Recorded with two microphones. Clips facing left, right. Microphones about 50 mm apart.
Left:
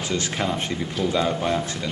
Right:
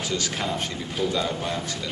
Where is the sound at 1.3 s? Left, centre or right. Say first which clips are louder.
Left 5 dB; centre.